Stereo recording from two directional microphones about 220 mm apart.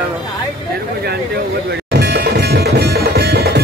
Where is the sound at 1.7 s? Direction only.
50° right (ahead or behind).